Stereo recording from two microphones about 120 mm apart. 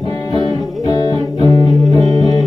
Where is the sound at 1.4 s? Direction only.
35° left (ahead or behind).